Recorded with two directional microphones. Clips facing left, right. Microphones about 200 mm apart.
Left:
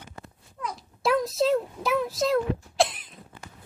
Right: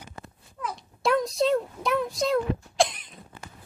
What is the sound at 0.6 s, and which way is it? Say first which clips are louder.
A child's voice: even; centre (ahead or behind).